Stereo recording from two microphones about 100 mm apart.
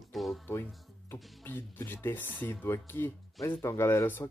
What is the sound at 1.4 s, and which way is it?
Speech, 20° left (ahead or behind).